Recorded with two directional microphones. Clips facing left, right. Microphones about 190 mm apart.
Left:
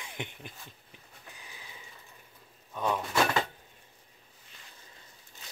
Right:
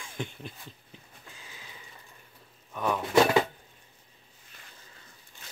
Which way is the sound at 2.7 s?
20° left (ahead or behind).